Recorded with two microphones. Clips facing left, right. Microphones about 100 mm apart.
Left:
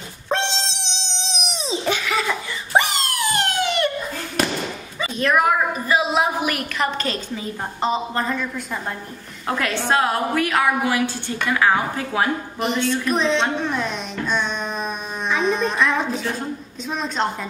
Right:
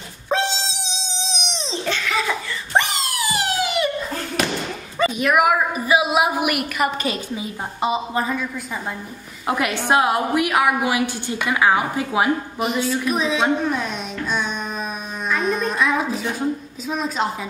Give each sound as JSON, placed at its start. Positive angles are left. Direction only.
{"t": 0.3, "sound": "wail", "side_deg": 0}
{"t": 2.1, "sound": "a sound", "side_deg": 0}
{"t": 5.1, "sound": "a woman's voice", "side_deg": -10}
{"t": 9.5, "sound": "a woman's voice", "side_deg": -15}
{"t": 12.5, "sound": "a woman's voice", "side_deg": -5}